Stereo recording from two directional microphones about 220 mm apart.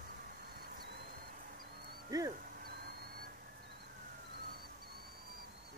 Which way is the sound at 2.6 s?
45° right (ahead or behind).